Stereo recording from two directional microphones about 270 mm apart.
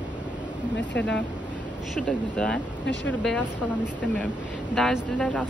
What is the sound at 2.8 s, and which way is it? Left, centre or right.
Speech, left.